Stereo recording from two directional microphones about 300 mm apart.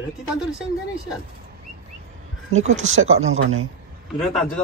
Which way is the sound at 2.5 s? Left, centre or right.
Right.